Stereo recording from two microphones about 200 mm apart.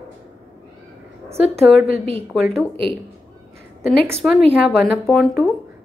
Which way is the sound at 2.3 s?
5° right (ahead or behind).